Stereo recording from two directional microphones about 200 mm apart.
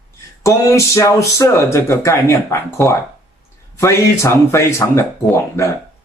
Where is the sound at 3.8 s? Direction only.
15° left (ahead or behind).